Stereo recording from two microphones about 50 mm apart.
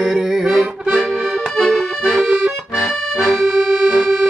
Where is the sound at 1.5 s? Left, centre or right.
Centre.